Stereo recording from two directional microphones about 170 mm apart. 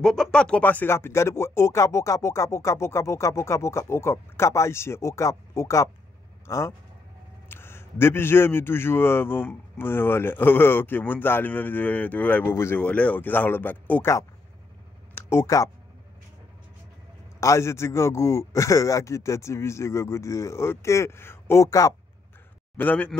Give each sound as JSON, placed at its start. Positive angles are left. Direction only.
{"t": 0.0, "sound": "a man's voice", "side_deg": 5}
{"t": 17.4, "sound": "a man's voice", "side_deg": 15}